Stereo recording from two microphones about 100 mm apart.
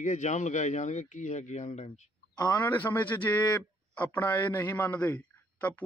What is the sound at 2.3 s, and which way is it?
Speech, 40° left (ahead or behind).